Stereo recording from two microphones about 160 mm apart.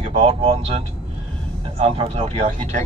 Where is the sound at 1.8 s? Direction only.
35° right (ahead or behind).